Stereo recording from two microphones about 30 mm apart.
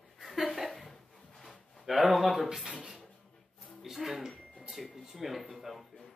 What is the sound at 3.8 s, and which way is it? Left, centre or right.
Speech, centre.